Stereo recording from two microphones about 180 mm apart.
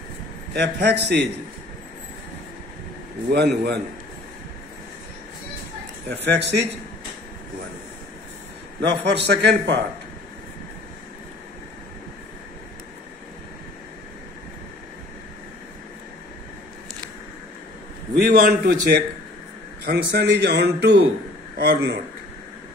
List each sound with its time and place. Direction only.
0.5 s a man's voice: 70° right (ahead or behind)
3.3 s a man's voice: 65° right (ahead or behind)
6.0 s a man's voice: 70° right (ahead or behind)
9.1 s a man's voice: 70° right (ahead or behind)
18.3 s a man's voice: 50° right (ahead or behind)
19.8 s a man's voice: 65° right (ahead or behind)